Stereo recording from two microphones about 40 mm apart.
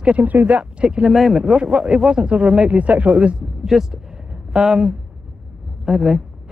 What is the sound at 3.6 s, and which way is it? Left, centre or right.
Speech, centre.